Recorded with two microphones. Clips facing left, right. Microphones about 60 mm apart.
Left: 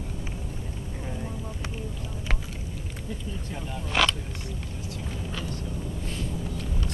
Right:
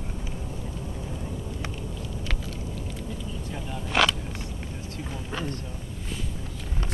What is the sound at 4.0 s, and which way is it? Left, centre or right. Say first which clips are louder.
Vehicle: right 2 dB; centre.